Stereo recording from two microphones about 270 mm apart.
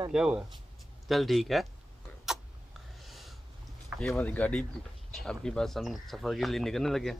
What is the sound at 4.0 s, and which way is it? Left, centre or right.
Speech, centre.